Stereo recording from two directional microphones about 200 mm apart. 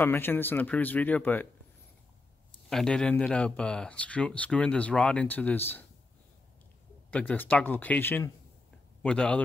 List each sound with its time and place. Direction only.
0.0 s speech: 10° left (ahead or behind)
2.7 s speech: 5° left (ahead or behind)
7.1 s speech: 5° left (ahead or behind)